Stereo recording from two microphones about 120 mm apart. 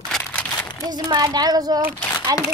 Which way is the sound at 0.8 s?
35° right (ahead or behind).